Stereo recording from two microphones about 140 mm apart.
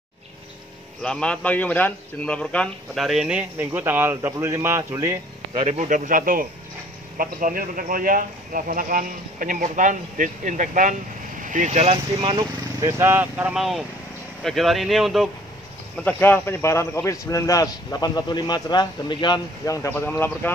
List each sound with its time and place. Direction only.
1.0 s a man's voice: 5° left (ahead or behind); by 5.2 s 20° right (ahead or behind)
5.7 s speech: 60° right (ahead or behind); by 12.4 s 40° right (ahead or behind)
12.8 s a man's voice: 20° right (ahead or behind); by 15.2 s centre (ahead or behind)
16.0 s a man's voice: 10° left (ahead or behind)